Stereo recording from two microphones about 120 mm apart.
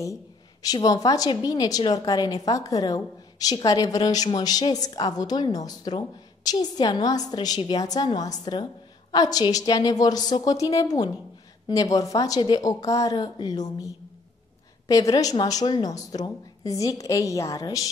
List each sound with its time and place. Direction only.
0.0 s a woman's voice: 30° left (ahead or behind)